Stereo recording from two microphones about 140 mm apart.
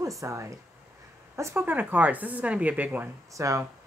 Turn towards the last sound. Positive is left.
turn(degrees=-25)  # may be behind; listen again after turning